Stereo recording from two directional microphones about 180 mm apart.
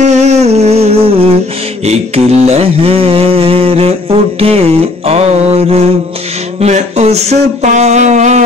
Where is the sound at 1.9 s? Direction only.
35° right (ahead or behind).